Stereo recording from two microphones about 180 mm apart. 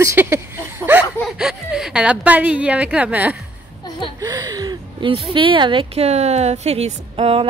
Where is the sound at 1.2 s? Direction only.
Centre (ahead or behind).